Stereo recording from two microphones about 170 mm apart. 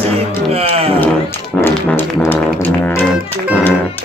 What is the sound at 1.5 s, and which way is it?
Music, 15° left (ahead or behind).